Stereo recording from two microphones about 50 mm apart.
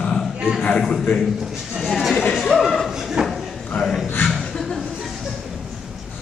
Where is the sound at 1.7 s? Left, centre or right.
Centre.